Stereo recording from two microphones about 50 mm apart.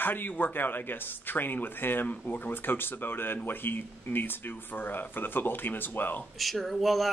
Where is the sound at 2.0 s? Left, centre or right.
Left.